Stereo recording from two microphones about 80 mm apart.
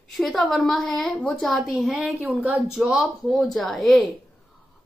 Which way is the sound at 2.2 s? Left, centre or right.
Centre.